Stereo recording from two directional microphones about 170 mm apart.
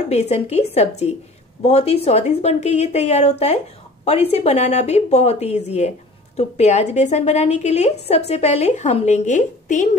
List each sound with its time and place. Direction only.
0.1 s speech: 40° left (ahead or behind)